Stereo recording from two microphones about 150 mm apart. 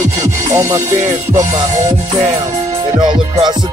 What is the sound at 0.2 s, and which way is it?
Music, 20° right (ahead or behind).